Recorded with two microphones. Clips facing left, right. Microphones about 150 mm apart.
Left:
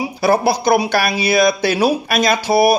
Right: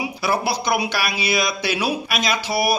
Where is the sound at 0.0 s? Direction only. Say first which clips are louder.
Left 7 dB; 45° left (ahead or behind).